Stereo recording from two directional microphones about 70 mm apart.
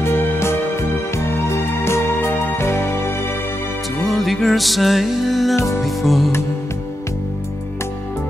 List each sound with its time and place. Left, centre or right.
0.0 s music: left
4.0 s music: centre